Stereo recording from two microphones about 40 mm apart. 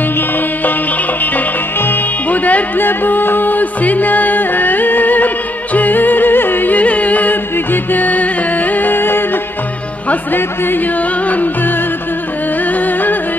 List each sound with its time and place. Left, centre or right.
2.2 s music: left
2.8 s music: left
6.8 s music: left
7.5 s music: left
10.3 s speech: left
11.2 s music: left
12.7 s music: left